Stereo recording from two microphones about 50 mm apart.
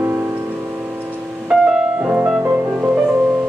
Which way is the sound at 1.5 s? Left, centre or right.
Right.